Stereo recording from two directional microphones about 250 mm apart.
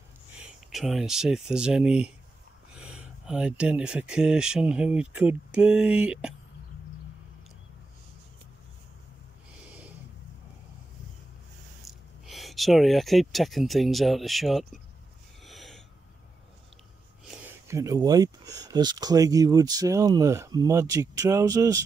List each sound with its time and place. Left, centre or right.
0.4 s speech: centre
11.8 s speech: centre
15.4 s gasp: centre
17.6 s speech: centre